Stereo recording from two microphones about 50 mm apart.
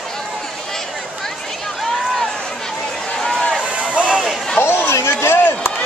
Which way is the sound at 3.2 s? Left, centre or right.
Centre.